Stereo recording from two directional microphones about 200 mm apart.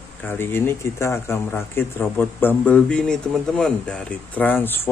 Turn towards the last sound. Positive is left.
turn(degrees=10)  # may be behind; listen again after turning